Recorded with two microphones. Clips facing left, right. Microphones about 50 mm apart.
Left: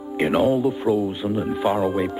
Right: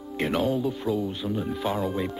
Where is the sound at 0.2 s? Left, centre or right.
Centre.